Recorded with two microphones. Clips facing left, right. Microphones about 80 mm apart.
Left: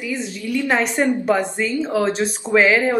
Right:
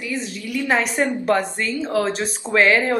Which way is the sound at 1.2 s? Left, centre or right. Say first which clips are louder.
Left 1 dB; centre.